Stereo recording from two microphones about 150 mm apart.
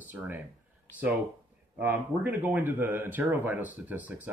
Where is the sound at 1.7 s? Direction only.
10° right (ahead or behind).